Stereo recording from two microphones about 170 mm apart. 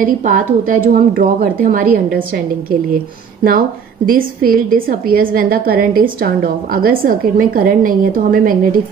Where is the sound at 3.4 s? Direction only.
60° right (ahead or behind).